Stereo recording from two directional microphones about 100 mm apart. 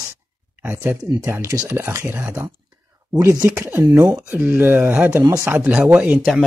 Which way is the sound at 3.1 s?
35° right (ahead or behind).